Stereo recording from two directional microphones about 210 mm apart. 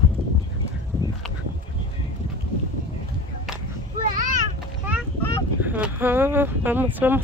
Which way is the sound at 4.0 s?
40° right (ahead or behind).